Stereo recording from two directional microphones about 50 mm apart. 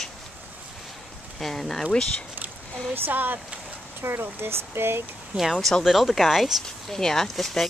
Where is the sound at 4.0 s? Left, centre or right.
Right.